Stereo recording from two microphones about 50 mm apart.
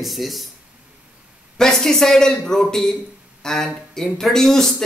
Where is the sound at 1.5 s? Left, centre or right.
Centre.